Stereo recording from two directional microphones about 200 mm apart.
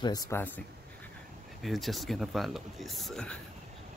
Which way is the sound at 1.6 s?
Centre (ahead or behind).